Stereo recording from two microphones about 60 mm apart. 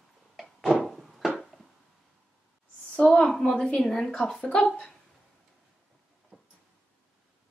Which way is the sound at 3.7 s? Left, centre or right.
Centre.